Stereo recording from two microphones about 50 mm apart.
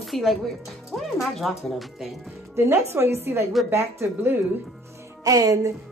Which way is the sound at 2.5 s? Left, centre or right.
Right.